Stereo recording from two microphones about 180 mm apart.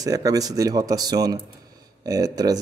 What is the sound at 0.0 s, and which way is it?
A man's voice, 20° right (ahead or behind).